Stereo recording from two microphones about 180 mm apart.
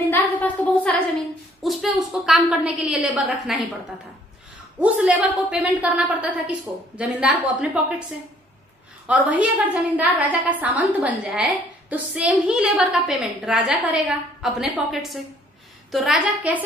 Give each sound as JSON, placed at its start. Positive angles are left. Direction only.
{"t": 0.1, "sound": "a woman's voice", "side_deg": 5}
{"t": 4.7, "sound": "a woman's voice", "side_deg": -5}
{"t": 9.0, "sound": "a woman's voice", "side_deg": -10}